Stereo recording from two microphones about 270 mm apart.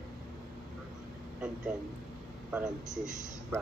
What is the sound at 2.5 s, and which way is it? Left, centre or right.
A man's voice, centre.